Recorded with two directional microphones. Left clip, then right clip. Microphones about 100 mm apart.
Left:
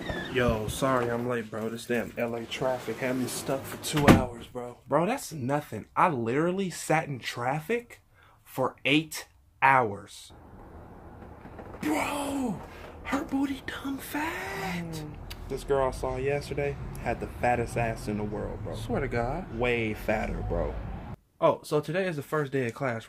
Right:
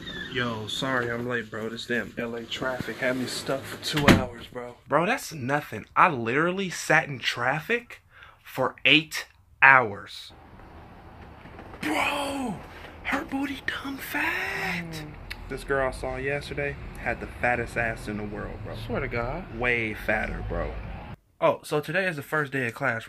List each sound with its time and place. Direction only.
0.3 s speech: 20° left (ahead or behind)
2.1 s speech: 45° left (ahead or behind)
3.0 s speech: 20° left (ahead or behind)
4.2 s speech: 30° left (ahead or behind)
4.9 s speech: 15° left (ahead or behind)
8.8 s speech: 15° left (ahead or behind)
11.8 s speech: 20° left (ahead or behind)
15.5 s speech: 15° left (ahead or behind)
18.7 s speech: 30° left (ahead or behind)
21.4 s speech: 25° left (ahead or behind)